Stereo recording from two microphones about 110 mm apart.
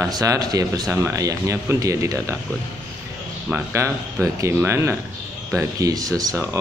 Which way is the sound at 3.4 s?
20° right (ahead or behind).